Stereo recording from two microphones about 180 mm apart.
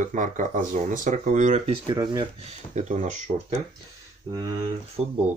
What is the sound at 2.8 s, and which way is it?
Speech, 40° right (ahead or behind).